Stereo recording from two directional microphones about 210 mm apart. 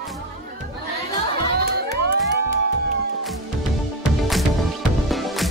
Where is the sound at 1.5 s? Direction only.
45° right (ahead or behind).